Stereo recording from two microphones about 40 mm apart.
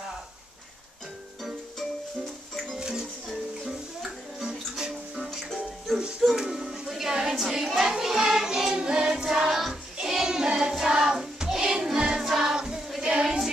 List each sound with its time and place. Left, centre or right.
2.8 s music: centre
3.3 s music: centre
4.4 s music: centre
5.1 s music: centre
6.3 s music: centre
7.5 s child singing: centre
8.5 s music: centre
10.0 s child singing: centre
10.9 s music: centre
13.0 s child singing: centre